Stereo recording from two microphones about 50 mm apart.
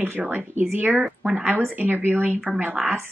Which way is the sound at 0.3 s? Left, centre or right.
Right.